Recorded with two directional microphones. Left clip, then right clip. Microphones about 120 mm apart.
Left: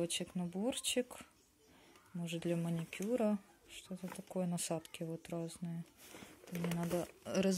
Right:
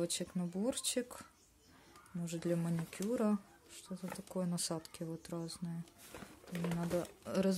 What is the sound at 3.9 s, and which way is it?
Speech, 15° left (ahead or behind).